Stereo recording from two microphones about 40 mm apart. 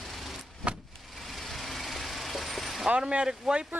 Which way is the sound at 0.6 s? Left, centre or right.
Right.